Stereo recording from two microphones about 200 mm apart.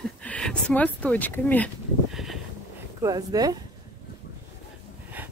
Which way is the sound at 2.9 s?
20° right (ahead or behind).